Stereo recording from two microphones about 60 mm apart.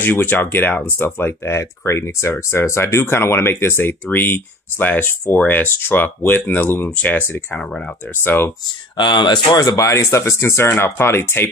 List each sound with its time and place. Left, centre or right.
0.0 s speech: left
8.2 s speech: left
9.6 s speech: left